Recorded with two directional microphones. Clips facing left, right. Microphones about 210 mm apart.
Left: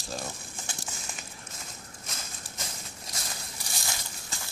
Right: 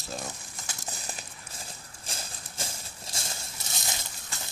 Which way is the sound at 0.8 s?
35° right (ahead or behind).